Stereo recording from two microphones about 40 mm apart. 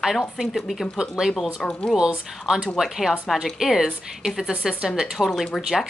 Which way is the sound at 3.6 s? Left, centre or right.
Centre.